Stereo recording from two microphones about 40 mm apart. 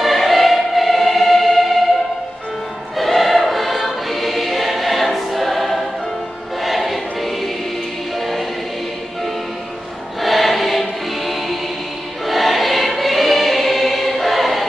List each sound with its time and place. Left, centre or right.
0.0 s music: centre
3.0 s choir: centre
10.2 s music: centre
12.3 s choir: centre